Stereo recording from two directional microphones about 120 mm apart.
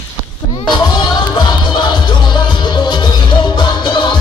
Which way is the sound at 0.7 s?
40° left (ahead or behind).